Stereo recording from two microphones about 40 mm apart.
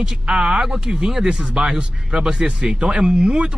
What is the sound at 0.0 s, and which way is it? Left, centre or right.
A man's voice, centre.